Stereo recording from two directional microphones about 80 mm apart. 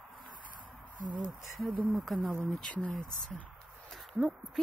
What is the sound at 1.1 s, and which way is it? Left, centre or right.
Speech, right.